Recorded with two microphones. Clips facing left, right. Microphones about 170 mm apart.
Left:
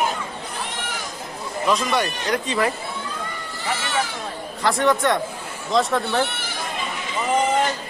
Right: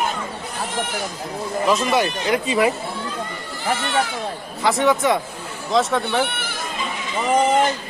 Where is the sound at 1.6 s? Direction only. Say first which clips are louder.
Right 2 dB; 5° right (ahead or behind).